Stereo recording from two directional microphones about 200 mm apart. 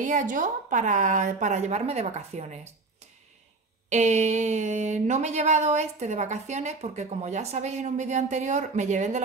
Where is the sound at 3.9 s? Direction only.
35° right (ahead or behind).